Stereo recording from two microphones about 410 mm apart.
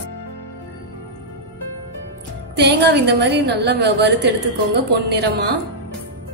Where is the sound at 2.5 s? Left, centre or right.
Right.